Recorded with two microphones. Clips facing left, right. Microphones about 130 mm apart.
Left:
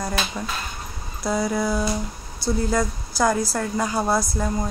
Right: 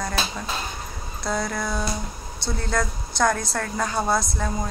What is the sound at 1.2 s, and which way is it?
Speech, 10° left (ahead or behind).